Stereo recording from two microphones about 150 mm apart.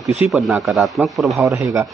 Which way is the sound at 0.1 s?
5° right (ahead or behind).